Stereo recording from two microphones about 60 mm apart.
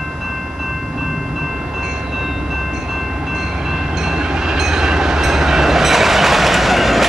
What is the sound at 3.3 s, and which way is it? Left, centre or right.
Train, centre.